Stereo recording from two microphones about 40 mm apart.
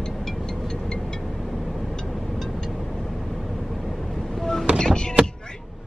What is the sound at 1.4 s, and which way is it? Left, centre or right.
Vehicle, centre.